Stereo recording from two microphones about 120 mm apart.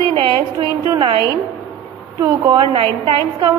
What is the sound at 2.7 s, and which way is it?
Speech, 45° right (ahead or behind).